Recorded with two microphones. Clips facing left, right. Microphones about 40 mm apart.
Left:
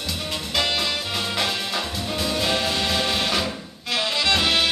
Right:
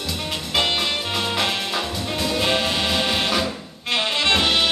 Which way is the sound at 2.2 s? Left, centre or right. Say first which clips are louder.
Right 2 dB; centre.